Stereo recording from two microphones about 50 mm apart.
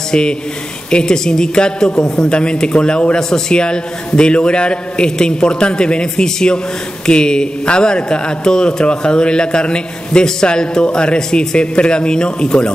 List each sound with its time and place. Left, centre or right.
0.1 s a woman's voice: centre